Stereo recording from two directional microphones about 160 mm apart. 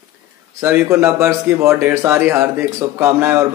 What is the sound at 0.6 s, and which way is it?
Speech, 15° right (ahead or behind).